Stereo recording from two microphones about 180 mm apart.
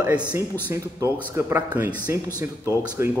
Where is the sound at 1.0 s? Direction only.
10° left (ahead or behind).